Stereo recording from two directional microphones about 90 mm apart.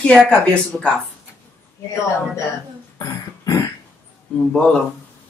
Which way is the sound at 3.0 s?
40° left (ahead or behind).